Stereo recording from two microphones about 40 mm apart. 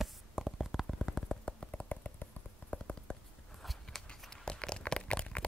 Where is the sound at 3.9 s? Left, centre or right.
Centre.